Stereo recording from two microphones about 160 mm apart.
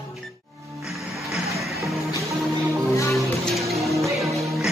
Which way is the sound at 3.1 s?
Centre (ahead or behind).